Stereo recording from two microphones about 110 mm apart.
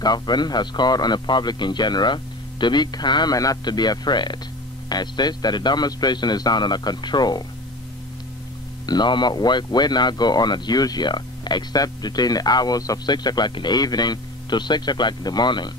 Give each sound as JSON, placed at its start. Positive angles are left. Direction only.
{"t": 0.0, "sound": "speech", "side_deg": 40}
{"t": 8.8, "sound": "speech", "side_deg": 40}